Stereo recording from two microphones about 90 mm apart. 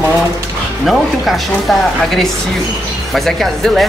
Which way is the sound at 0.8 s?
Centre (ahead or behind).